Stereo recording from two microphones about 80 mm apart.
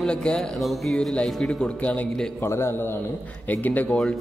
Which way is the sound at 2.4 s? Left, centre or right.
Left.